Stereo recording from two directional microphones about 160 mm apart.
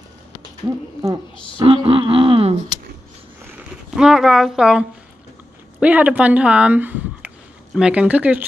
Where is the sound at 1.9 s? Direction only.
35° right (ahead or behind).